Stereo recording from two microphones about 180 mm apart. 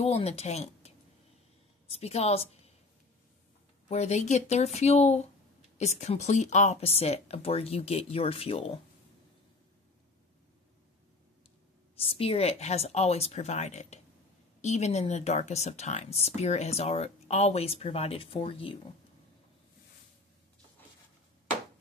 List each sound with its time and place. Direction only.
0.0 s speech: 35° left (ahead or behind)
3.9 s speech: 40° left (ahead or behind)
12.0 s speech: 30° left (ahead or behind)